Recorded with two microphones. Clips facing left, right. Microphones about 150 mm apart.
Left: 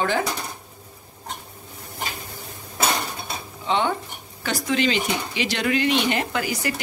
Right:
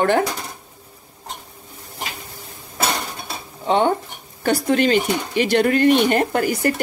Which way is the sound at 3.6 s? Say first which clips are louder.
Right 5 dB; 50° right (ahead or behind).